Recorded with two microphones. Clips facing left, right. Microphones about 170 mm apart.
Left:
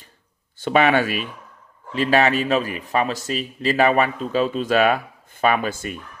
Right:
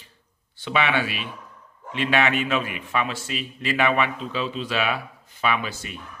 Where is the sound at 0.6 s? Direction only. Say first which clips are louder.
Left 6 dB; 45° left (ahead or behind).